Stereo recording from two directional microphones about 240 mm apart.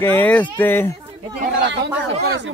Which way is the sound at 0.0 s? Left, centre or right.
Centre.